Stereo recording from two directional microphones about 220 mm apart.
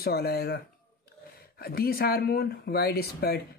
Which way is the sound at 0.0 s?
45° left (ahead or behind).